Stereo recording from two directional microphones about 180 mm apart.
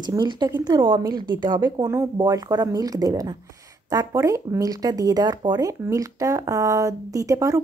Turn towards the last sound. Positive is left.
turn(degrees=-15)  # may be behind; listen again after turning